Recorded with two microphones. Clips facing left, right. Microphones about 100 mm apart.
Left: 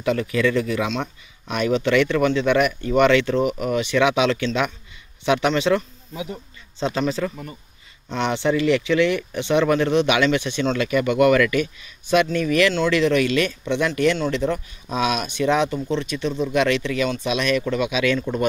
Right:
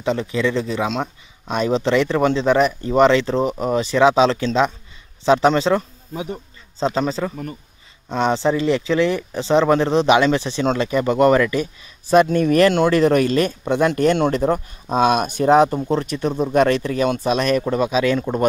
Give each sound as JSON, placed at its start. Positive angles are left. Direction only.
{"t": 0.0, "sound": "speech", "side_deg": -25}